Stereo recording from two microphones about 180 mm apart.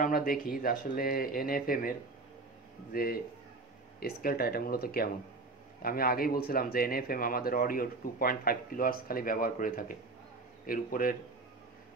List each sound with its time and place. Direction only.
0.0 s speech: 50° left (ahead or behind)